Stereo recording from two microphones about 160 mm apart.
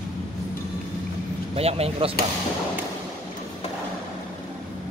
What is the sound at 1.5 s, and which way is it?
Speech, 40° right (ahead or behind).